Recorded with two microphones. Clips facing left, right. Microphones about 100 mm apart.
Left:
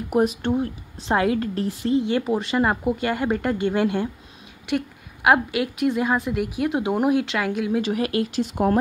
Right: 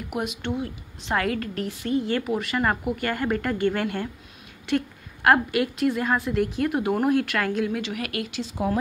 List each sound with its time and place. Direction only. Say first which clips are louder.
0.1 s a woman's voice: left 8 dB; 40° left (ahead or behind)
1.1 s a woman's voice: left 4 dB; 20° left (ahead or behind)
3.0 s a woman's voice: left 3 dB; 20° left (ahead or behind)
7.8 s a woman's voice: left 7 dB; 30° left (ahead or behind)
8.4 s speech: left 4 dB; 55° left (ahead or behind)